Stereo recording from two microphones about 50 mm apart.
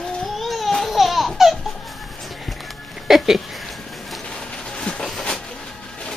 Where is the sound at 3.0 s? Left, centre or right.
Centre.